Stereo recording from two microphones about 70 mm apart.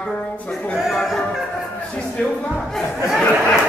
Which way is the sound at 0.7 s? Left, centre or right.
Centre.